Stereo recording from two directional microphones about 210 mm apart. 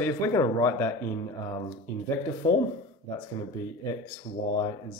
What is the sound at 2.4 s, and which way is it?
Speech, 15° left (ahead or behind).